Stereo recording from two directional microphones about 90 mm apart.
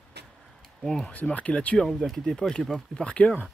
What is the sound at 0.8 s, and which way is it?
Speech, 5° left (ahead or behind).